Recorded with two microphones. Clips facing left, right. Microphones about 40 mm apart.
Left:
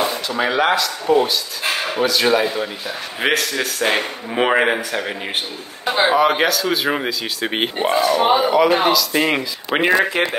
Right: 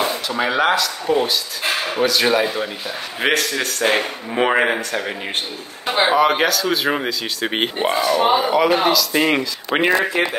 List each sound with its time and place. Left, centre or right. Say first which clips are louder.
0.0 s speech: even; centre
6.1 s speech: even; centre
8.2 s speech: left 1 dB; centre